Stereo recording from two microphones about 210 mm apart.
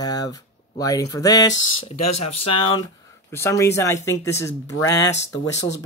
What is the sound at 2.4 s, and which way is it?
Speech, 90° left.